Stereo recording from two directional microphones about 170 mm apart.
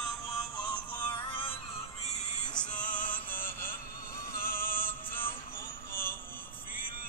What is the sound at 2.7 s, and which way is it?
Music, 50° left (ahead or behind).